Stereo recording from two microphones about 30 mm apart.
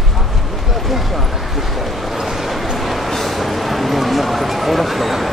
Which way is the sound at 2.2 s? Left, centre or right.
Centre.